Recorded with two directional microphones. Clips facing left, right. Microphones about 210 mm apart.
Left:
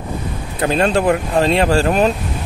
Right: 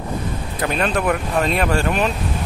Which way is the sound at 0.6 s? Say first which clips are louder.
Left 5 dB; 30° left (ahead or behind).